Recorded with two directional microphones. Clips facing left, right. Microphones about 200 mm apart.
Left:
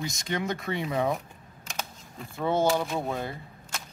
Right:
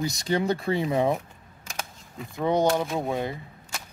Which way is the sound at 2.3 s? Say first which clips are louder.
Right 3 dB; 15° right (ahead or behind).